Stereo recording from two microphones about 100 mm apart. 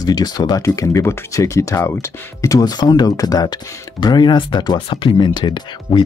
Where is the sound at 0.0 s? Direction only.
40° left (ahead or behind).